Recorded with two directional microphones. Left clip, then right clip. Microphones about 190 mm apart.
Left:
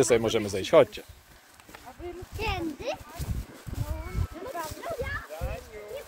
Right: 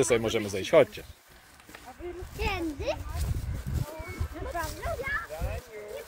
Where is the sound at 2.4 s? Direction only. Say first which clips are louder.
Even; 25° left (ahead or behind).